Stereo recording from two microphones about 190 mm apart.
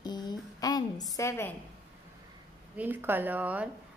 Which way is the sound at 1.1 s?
15° left (ahead or behind).